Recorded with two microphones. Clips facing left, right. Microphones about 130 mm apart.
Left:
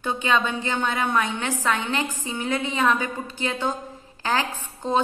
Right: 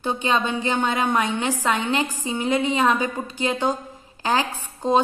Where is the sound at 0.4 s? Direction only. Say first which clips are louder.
Right 2 dB; 15° right (ahead or behind).